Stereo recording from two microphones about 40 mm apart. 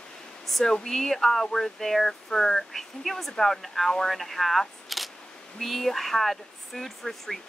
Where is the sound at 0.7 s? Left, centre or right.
Centre.